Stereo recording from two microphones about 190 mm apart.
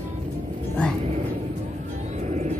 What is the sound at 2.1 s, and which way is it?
Vehicle, 35° right (ahead or behind).